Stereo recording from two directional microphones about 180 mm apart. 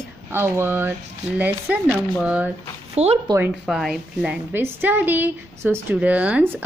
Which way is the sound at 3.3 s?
15° right (ahead or behind).